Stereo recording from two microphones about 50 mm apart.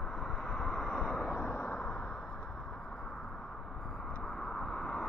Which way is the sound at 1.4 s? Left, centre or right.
Left.